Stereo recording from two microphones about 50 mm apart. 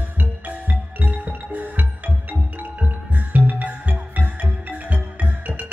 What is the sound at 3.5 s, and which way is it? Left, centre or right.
Music, right.